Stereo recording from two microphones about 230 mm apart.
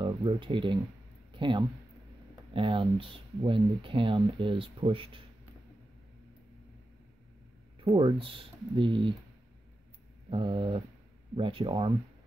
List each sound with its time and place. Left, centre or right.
0.0 s speech: right
7.8 s speech: right
10.3 s speech: right